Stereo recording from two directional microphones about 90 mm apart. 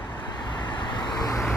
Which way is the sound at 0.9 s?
45° left (ahead or behind).